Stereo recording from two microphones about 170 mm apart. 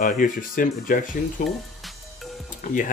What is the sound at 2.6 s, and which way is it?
Speech, 50° left (ahead or behind).